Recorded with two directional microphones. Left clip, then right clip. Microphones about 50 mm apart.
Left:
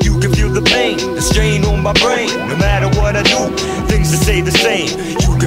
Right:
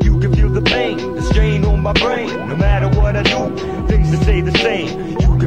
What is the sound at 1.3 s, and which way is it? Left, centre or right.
Music, centre.